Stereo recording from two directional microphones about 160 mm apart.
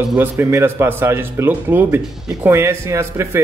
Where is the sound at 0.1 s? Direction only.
15° right (ahead or behind).